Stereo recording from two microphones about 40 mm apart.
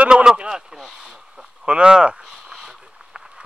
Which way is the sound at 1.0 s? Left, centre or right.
Right.